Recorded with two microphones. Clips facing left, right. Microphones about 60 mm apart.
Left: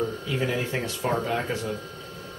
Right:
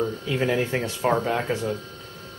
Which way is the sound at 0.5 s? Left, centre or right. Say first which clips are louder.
Right 4 dB; right.